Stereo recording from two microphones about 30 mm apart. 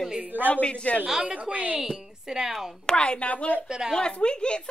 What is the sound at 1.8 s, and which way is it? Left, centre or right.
Speech, centre.